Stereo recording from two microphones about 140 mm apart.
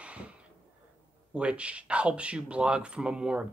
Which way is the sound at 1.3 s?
10° right (ahead or behind).